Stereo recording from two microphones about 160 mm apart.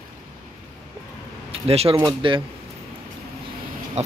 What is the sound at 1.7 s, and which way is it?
Speech, 40° right (ahead or behind).